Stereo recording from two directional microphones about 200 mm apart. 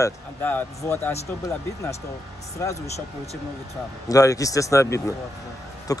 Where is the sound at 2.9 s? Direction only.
30° left (ahead or behind).